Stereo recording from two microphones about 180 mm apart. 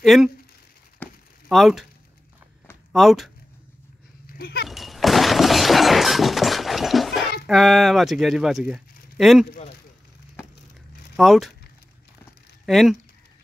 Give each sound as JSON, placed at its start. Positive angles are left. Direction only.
{"t": 0.0, "sound": "speech", "side_deg": 0}
{"t": 1.0, "sound": "a sound", "side_deg": 10}
{"t": 1.5, "sound": "speech", "side_deg": 0}
{"t": 2.9, "sound": "speech", "side_deg": 0}
{"t": 4.3, "sound": "goat", "side_deg": 60}
{"t": 4.6, "sound": "shatter", "side_deg": 0}
{"t": 7.4, "sound": "speech", "side_deg": 0}
{"t": 11.1, "sound": "speech", "side_deg": 0}
{"t": 12.6, "sound": "speech", "side_deg": 0}